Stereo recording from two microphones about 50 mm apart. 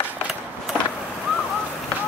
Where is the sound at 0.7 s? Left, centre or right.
Centre.